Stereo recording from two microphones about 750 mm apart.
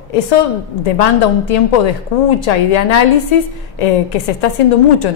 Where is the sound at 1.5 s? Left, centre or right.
Left.